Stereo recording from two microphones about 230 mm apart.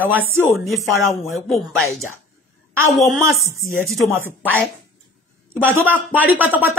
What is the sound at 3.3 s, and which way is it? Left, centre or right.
Speech, left.